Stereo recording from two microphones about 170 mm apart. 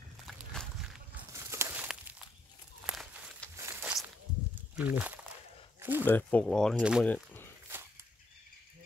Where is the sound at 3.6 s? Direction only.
15° right (ahead or behind).